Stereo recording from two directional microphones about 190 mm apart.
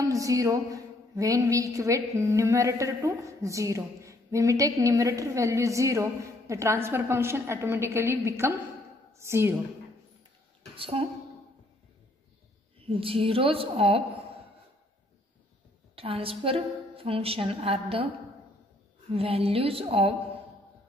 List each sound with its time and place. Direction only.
0.0 s a woman's voice: 15° right (ahead or behind)
10.8 s a woman's voice: 30° right (ahead or behind)
12.8 s a woman's voice: 30° right (ahead or behind)
16.0 s a woman's voice: 30° right (ahead or behind)
19.1 s a woman's voice: 30° right (ahead or behind)